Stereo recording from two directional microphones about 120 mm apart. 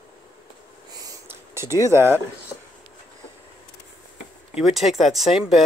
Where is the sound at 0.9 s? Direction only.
30° right (ahead or behind).